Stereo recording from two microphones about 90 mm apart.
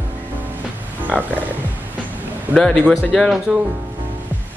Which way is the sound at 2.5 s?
10° left (ahead or behind).